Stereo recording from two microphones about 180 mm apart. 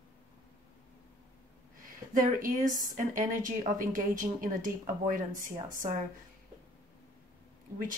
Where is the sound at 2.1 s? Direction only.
45° right (ahead or behind).